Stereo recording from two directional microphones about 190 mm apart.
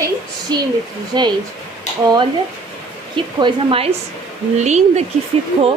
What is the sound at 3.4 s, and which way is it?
A woman's voice, 25° right (ahead or behind).